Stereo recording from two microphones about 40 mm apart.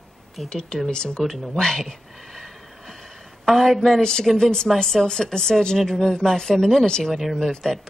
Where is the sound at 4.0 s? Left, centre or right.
Centre.